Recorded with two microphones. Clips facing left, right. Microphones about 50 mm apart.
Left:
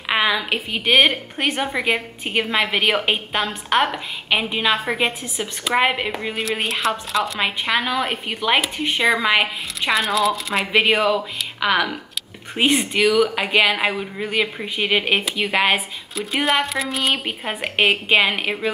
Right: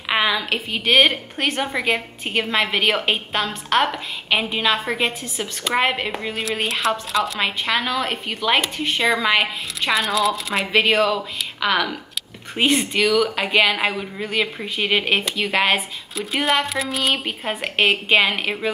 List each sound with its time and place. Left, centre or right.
0.1 s a woman's voice: centre
10.8 s a woman's voice: centre